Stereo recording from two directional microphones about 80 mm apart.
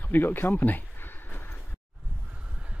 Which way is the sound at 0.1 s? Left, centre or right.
Left.